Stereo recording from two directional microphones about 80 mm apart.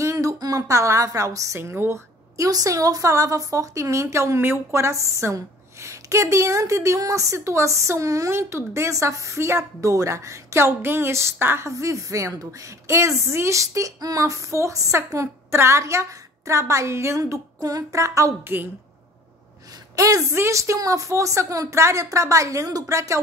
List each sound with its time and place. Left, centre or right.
0.0 s a woman's voice: right
18.4 s a woman's voice: right
20.0 s a woman's voice: right
20.3 s a woman's voice: right